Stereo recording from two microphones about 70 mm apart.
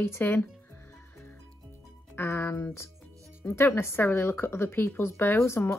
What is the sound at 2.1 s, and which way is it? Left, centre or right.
Speech, left.